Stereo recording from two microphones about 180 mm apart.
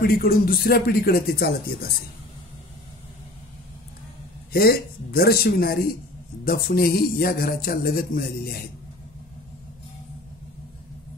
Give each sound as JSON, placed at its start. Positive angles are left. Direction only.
{"t": 0.0, "sound": "speech", "side_deg": 55}
{"t": 4.5, "sound": "speech", "side_deg": 60}